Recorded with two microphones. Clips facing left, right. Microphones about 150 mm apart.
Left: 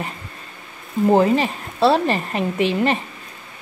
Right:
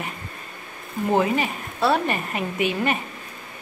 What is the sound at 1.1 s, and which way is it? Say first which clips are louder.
A woman's voice: left 4 dB; 35° left (ahead or behind).